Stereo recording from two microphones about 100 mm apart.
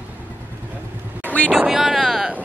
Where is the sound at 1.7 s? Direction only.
5° right (ahead or behind).